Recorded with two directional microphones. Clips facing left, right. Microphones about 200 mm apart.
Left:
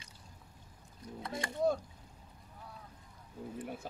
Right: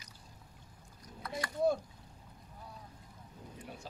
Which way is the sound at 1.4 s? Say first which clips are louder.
Left 2 dB; 25° left (ahead or behind).